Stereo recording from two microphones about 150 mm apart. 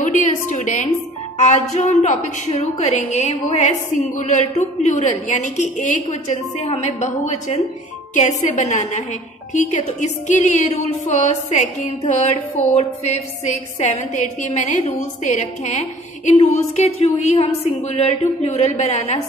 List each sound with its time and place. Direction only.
0.0 s a woman's voice: 55° left (ahead or behind)